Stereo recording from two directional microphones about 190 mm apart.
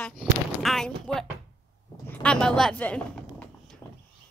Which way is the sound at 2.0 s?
5° left (ahead or behind).